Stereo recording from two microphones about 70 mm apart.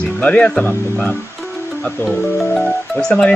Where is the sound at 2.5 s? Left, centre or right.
Centre.